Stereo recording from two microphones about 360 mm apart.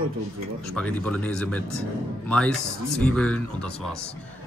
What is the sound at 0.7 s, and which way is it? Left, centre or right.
Speech, centre.